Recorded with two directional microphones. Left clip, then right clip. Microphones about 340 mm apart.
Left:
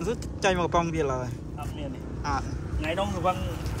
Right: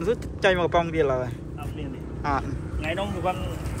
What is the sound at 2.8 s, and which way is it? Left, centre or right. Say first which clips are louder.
Speech: even; left.